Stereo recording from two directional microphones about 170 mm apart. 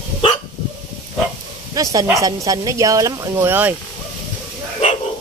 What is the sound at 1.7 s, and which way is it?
Speech, 20° right (ahead or behind).